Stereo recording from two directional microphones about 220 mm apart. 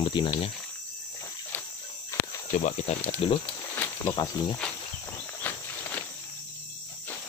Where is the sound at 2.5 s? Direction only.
35° left (ahead or behind); by 4.5 s 15° left (ahead or behind).